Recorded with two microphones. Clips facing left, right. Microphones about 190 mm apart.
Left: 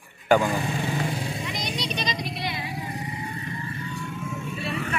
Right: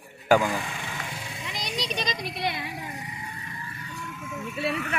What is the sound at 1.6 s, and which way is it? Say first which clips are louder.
Vehicle: right 2 dB; 40° right (ahead or behind).